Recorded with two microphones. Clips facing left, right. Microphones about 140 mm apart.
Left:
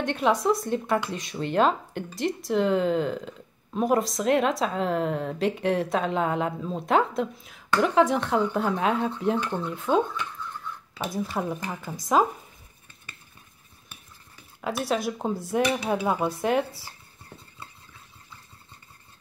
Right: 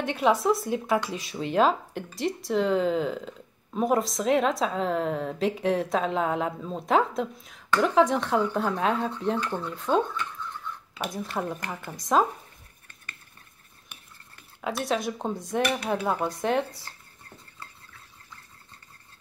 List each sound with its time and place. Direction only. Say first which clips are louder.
0.0 s speech: even; centre (ahead or behind)
9.4 s speech: left 1 dB; 15° left (ahead or behind)
9.7 s speech: left 1 dB; 5° left (ahead or behind)
14.3 s speech: left 1 dB; 5° left (ahead or behind)